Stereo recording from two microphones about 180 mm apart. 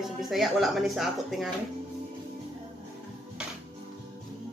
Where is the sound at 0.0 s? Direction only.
Centre (ahead or behind).